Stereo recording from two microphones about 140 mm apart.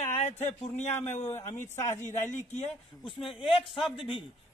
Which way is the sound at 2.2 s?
60° left (ahead or behind).